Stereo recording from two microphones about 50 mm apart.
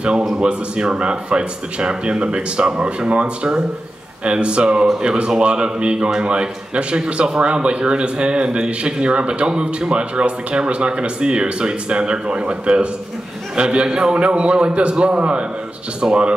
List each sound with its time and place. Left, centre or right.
0.4 s a man's voice: centre